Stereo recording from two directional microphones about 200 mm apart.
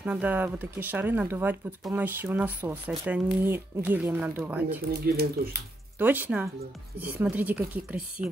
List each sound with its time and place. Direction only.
0.0 s speech: 10° right (ahead or behind)
4.8 s speech: 50° right (ahead or behind)
5.9 s speech: 10° right (ahead or behind)